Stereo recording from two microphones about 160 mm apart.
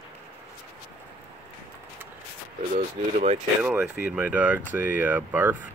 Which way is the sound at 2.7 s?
45° right (ahead or behind).